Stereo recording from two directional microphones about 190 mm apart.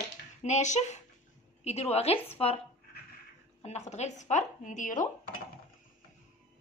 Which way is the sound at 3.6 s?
35° left (ahead or behind).